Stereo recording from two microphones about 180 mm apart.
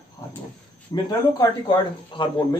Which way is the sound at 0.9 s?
25° left (ahead or behind).